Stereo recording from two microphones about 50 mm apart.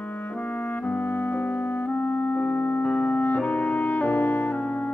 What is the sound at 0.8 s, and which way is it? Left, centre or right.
Clarinet, left.